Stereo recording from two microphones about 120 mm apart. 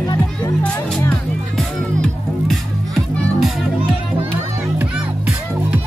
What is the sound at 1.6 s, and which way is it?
Music, centre (ahead or behind).